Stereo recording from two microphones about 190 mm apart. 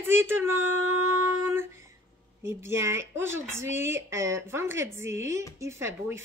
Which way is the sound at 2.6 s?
15° right (ahead or behind).